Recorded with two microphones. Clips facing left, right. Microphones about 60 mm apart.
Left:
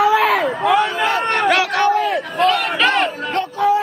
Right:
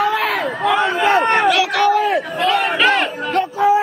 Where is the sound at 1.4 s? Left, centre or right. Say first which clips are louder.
Right 1 dB; left.